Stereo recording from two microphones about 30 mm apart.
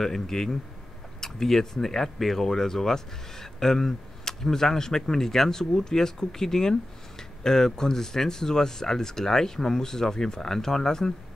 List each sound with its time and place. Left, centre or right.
0.0 s speech: centre